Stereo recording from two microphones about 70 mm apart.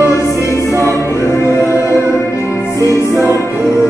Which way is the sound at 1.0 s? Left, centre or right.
Left.